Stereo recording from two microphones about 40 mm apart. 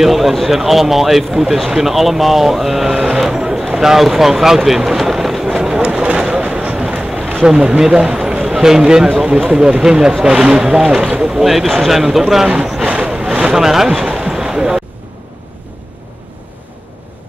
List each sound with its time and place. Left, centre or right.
0.0 s speech: centre
3.3 s a sound: centre
5.9 s vehicle: right
7.4 s speech: right
11.4 s speech: centre
12.8 s vehicle: right
13.6 s speech: centre
14.0 s a sound: centre